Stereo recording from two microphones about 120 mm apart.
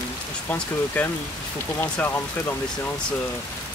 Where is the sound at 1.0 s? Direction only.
10° left (ahead or behind).